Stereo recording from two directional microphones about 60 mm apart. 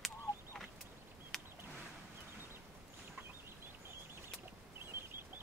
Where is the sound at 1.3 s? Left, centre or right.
Centre.